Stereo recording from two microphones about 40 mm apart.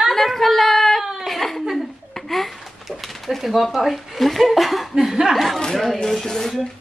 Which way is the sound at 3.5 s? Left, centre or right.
Centre.